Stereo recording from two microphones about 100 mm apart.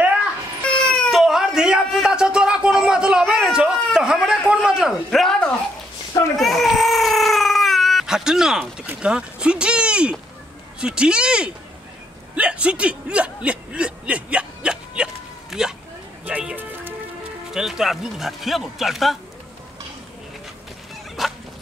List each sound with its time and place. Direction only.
0.7 s baby cry: 10° left (ahead or behind)
1.1 s a sound: 5° right (ahead or behind)
3.3 s a man's voice: 5° right (ahead or behind)
6.3 s baby cry: centre (ahead or behind)
8.8 s speech: 10° right (ahead or behind)
15.5 s a sound: 5° right (ahead or behind)
16.3 s music: 15° right (ahead or behind)
17.5 s speech: 5° right (ahead or behind)
21.2 s fowl: centre (ahead or behind)